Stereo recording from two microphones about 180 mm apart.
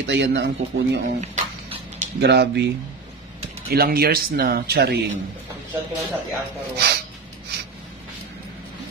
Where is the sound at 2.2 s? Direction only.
70° right (ahead or behind).